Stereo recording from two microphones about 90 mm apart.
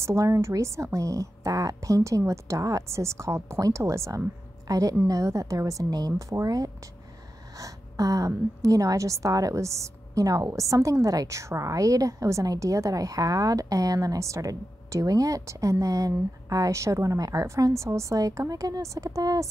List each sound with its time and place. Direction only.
0.0 s a woman's voice: 35° right (ahead or behind)
7.6 s a sound: 40° right (ahead or behind)
8.6 s a woman's voice: 40° right (ahead or behind)